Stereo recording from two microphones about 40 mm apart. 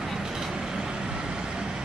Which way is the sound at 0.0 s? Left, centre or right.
Centre.